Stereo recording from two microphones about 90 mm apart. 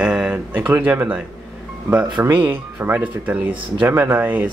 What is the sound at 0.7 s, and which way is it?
Speech, 20° right (ahead or behind).